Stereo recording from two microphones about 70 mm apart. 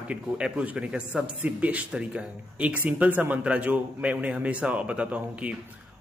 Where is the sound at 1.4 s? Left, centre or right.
Right.